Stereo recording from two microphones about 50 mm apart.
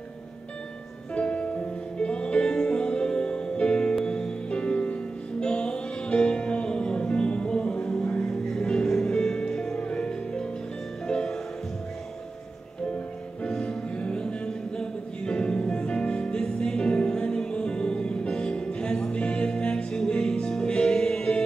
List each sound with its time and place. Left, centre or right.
1.1 s music: left
13.4 s music: centre